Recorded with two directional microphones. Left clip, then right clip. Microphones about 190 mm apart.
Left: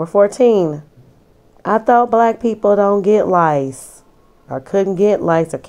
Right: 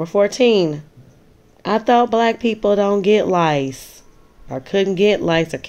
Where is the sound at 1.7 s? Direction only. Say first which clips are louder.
Left 3 dB; 10° left (ahead or behind).